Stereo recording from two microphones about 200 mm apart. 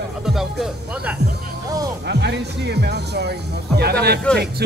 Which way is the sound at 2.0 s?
55° right (ahead or behind).